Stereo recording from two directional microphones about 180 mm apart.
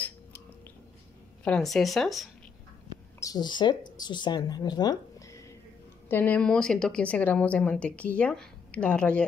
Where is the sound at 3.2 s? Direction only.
25° left (ahead or behind).